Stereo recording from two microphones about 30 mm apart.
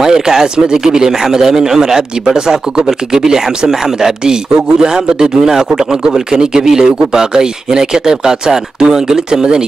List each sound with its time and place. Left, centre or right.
0.0 s speech: centre